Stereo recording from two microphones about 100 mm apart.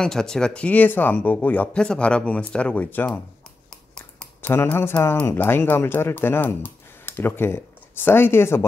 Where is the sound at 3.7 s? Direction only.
5° left (ahead or behind).